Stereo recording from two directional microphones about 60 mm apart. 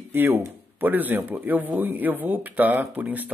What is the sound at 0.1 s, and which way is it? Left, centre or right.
Speech, right.